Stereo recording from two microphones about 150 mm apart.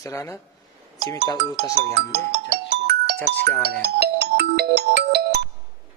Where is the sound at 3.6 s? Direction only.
90° right.